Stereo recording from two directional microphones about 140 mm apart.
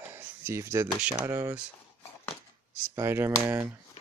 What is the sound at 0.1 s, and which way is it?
Speech, 15° right (ahead or behind).